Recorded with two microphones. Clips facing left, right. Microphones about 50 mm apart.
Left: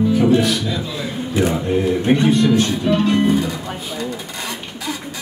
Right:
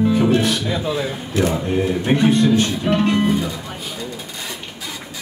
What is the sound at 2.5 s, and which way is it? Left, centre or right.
Music, right.